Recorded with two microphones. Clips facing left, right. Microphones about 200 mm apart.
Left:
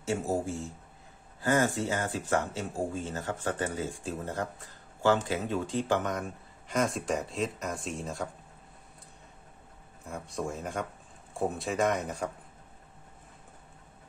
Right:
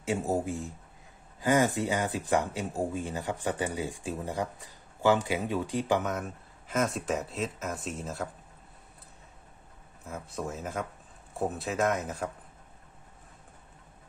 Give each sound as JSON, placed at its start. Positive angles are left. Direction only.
{"t": 0.0, "sound": "speech", "side_deg": -20}
{"t": 10.0, "sound": "speech", "side_deg": -5}